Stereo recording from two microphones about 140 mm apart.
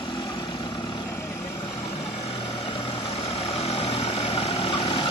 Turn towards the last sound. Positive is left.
turn(degrees=40)  # may be behind; listen again after turning